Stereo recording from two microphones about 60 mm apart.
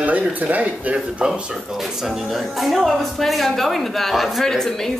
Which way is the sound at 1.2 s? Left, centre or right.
Centre.